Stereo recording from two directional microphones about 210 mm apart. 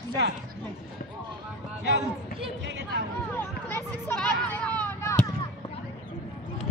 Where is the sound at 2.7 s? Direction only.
55° right (ahead or behind).